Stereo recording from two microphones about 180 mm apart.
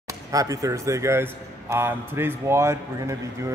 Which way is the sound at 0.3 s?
20° right (ahead or behind).